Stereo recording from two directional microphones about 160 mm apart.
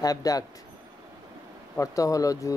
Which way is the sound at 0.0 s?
25° left (ahead or behind).